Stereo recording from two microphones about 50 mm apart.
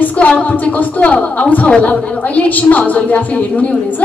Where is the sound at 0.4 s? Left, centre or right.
Left.